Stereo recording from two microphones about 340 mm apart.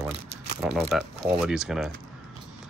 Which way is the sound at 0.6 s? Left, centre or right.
Centre.